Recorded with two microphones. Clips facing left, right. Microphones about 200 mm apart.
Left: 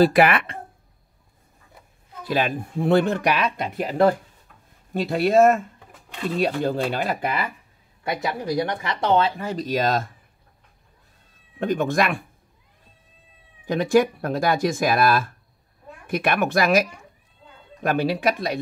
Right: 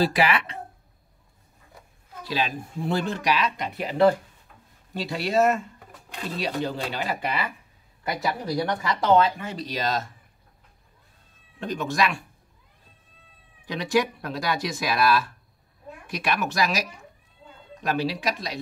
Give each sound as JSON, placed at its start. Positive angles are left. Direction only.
{"t": 0.0, "sound": "speech", "side_deg": 55}
{"t": 2.2, "sound": "speech", "side_deg": 55}
{"t": 8.8, "sound": "speech", "side_deg": 30}
{"t": 11.6, "sound": "speech", "side_deg": 55}
{"t": 13.7, "sound": "speech", "side_deg": 50}
{"t": 17.8, "sound": "speech", "side_deg": 55}